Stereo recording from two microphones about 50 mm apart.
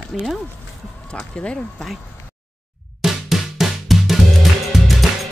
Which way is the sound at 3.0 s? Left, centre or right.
Centre.